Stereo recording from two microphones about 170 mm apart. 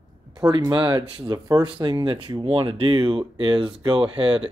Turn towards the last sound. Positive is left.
turn(degrees=-30)  # may be behind; listen again after turning